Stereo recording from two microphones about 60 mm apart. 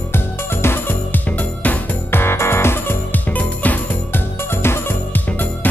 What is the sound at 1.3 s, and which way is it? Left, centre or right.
Music, left.